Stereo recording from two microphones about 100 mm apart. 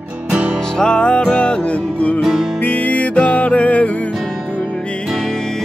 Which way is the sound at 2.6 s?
15° left (ahead or behind).